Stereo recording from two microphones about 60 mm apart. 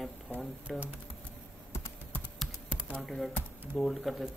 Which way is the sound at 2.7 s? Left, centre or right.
Right.